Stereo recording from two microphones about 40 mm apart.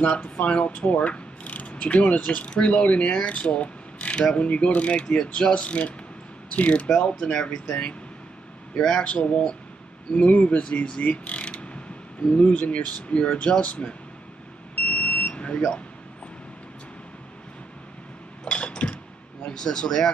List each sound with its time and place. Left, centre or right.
0.0 s speech: left
5.0 s mechanisms: centre
5.3 s speech: left
7.1 s speech: left
9.0 s speech: left
11.0 s speech: left
11.4 s mechanisms: left
12.4 s speech: left
14.8 s smoke detector: left
15.4 s speech: left
18.4 s dishes: left
18.7 s chink: left
19.4 s speech: centre